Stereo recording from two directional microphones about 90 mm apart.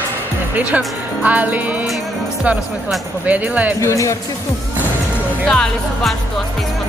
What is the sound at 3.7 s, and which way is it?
Speech, 35° left (ahead or behind).